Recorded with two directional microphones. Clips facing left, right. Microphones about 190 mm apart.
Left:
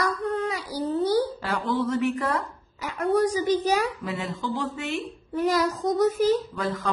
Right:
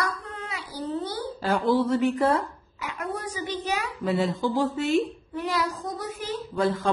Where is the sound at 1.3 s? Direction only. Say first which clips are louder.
Right 4 dB; 30° right (ahead or behind).